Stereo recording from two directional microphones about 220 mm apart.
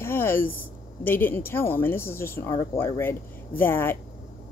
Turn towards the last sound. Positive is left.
turn(degrees=10)  # may be behind; listen again after turning